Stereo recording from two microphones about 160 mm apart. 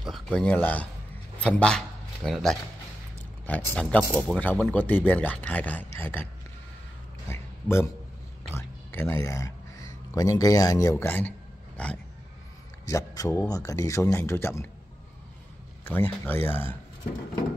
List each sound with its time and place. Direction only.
0.0 s speech: 5° left (ahead or behind)
7.2 s a sound: 15° left (ahead or behind)
8.5 s speech: 15° left (ahead or behind)
12.8 s speech: 20° left (ahead or behind)
15.9 s speech: 15° left (ahead or behind)